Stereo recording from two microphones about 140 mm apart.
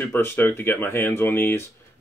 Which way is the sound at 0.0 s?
15° left (ahead or behind).